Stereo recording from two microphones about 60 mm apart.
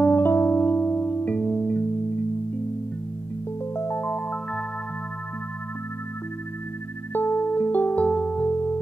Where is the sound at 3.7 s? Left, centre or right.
Left.